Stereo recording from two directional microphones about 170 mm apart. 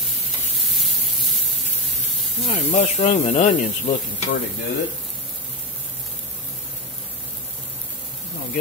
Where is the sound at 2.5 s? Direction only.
45° left (ahead or behind).